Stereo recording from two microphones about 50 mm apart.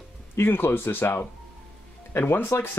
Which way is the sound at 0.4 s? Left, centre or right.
Left.